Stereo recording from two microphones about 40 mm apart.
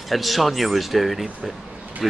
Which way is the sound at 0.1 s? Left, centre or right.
Centre.